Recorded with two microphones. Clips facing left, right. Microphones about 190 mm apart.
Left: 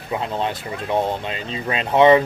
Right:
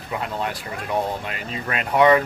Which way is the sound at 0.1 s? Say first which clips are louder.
Left 3 dB; 25° left (ahead or behind).